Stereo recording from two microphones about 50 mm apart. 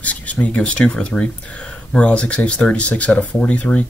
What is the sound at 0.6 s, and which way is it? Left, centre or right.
Speech, left.